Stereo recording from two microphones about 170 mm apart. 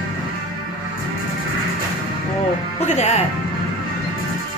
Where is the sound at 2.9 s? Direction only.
40° left (ahead or behind).